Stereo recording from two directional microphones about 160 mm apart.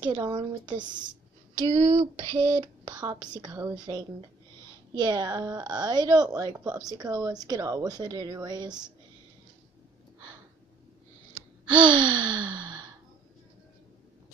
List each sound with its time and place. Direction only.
0.2 s speech: 30° right (ahead or behind)
4.9 s speech: 25° right (ahead or behind)
11.7 s gasp: 30° right (ahead or behind)